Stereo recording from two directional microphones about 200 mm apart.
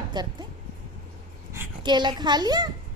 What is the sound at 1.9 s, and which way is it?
Speech, 20° right (ahead or behind).